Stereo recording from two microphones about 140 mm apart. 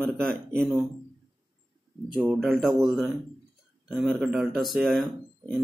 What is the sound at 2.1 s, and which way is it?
Speech, 10° right (ahead or behind).